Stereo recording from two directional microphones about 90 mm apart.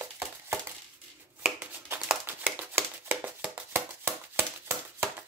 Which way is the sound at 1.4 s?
10° right (ahead or behind).